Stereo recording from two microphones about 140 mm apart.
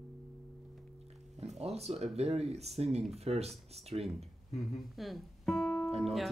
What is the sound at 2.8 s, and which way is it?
Speech, 50° right (ahead or behind).